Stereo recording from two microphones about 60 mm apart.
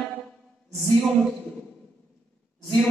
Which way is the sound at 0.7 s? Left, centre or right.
Centre.